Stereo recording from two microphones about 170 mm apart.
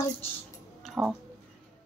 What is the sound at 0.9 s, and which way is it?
Speech, 5° right (ahead or behind).